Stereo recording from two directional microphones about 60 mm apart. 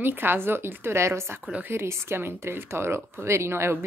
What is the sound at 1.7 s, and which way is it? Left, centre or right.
Speech, right.